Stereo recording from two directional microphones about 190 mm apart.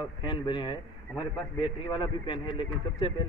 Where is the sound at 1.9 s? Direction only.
25° left (ahead or behind).